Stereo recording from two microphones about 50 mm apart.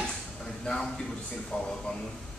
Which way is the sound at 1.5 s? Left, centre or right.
Left.